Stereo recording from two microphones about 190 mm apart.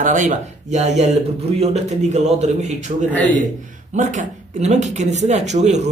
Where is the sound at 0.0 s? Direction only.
45° right (ahead or behind).